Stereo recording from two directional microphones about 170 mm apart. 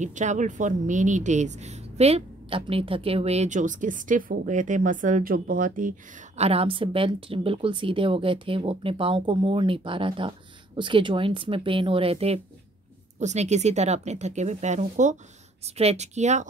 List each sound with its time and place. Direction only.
0.0 s a woman's voice: 45° right (ahead or behind)